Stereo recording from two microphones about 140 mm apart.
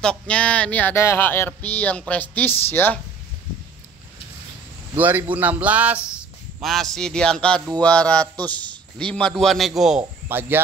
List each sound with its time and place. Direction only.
0.0 s speech: 5° left (ahead or behind)
4.9 s a man's voice: 10° right (ahead or behind)
6.6 s a man's voice: centre (ahead or behind)
10.2 s speech: 15° right (ahead or behind)